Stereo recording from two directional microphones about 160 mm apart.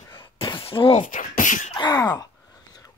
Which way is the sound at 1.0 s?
55° left (ahead or behind).